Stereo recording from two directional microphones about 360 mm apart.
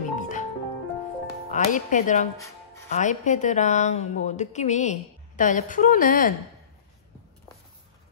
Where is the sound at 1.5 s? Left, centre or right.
Left.